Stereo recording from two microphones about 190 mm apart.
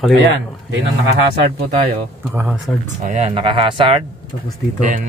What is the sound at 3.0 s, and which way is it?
Speech, 35° right (ahead or behind).